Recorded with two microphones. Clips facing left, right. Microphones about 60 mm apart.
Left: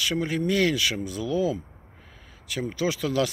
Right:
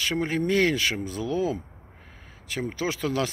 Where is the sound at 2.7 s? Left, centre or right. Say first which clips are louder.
Left 3 dB; right.